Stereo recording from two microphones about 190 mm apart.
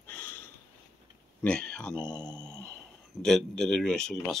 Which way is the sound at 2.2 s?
15° right (ahead or behind).